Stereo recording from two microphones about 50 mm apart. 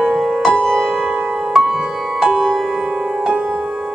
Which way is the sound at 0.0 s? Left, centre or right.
Centre.